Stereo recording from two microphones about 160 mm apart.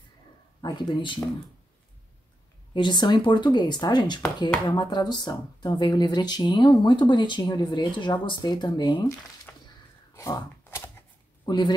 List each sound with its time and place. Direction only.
0.6 s speech: 25° left (ahead or behind)
2.7 s speech: 30° left (ahead or behind)
9.5 s a sound: 10° left (ahead or behind)
11.4 s a man's voice: 25° left (ahead or behind)